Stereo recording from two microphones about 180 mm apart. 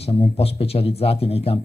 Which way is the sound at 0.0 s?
35° left (ahead or behind).